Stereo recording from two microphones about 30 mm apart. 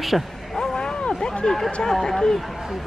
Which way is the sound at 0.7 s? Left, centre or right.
Left.